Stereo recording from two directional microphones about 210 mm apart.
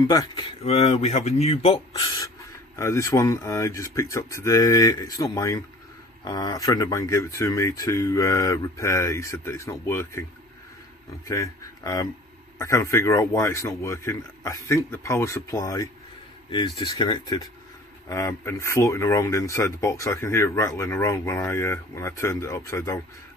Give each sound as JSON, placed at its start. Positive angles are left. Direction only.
{"t": 0.1, "sound": "speech", "side_deg": 15}
{"t": 0.6, "sound": "speech", "side_deg": 30}
{"t": 2.0, "sound": "speech", "side_deg": 15}
{"t": 11.2, "sound": "speech", "side_deg": 15}